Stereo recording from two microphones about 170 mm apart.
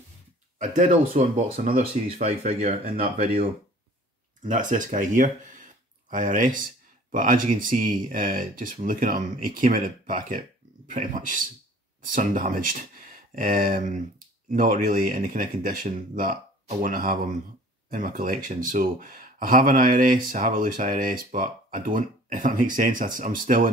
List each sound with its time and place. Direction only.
0.6 s speech: 50° right (ahead or behind)
2.2 s speech: 35° right (ahead or behind)
2.8 s speech: 60° right (ahead or behind)